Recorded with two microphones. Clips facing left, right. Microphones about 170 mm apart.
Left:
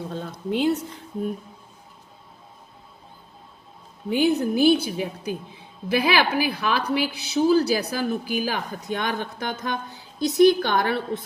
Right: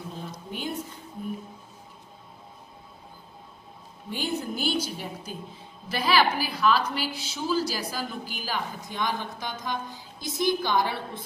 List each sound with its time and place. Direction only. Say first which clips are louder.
0.1 s speech: left 10 dB; 75° left (ahead or behind)
4.3 s a woman's voice: left 10 dB; 65° left (ahead or behind)